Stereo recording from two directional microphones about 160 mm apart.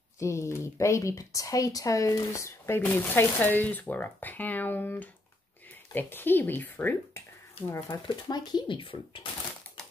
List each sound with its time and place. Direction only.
0.2 s speech: 20° left (ahead or behind)
7.7 s speech: 25° left (ahead or behind)